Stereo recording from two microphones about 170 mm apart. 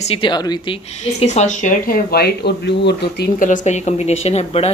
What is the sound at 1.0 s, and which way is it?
A woman's voice, 40° left (ahead or behind).